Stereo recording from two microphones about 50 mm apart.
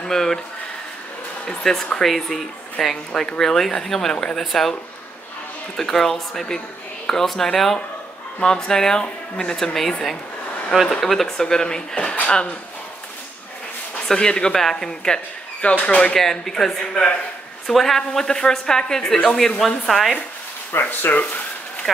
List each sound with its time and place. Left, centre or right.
0.1 s a woman's voice: centre
1.4 s a woman's voice: centre
5.8 s a woman's voice: centre
10.7 s a woman's voice: centre; by 12.5 s left
14.0 s a woman's voice: centre
15.7 s speech: left
16.2 s a woman's voice: centre
20.8 s speech: left
21.1 s speech: left
21.9 s speech: centre